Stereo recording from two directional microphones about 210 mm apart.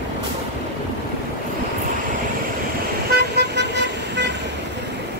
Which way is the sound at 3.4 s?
55° right (ahead or behind).